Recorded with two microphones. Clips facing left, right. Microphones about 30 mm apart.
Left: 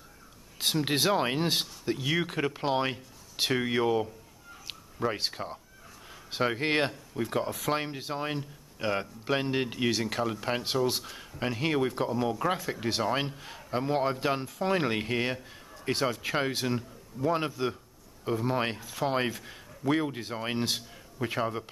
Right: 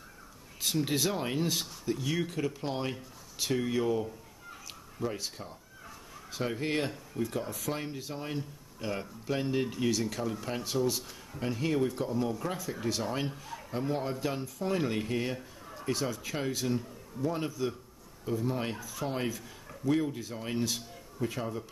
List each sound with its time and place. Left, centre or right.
0.6 s speech: left